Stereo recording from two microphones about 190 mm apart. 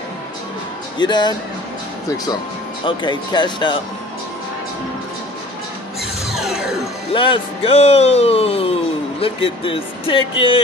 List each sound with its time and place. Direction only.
0.9 s speech: 25° left (ahead or behind)
2.8 s speech: 25° left (ahead or behind)
6.2 s music: centre (ahead or behind)
7.1 s speech: 25° left (ahead or behind)